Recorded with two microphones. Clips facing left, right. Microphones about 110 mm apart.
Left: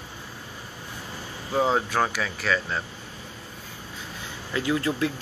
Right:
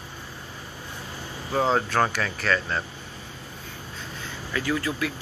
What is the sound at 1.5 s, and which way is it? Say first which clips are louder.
Speech: even; 5° left (ahead or behind).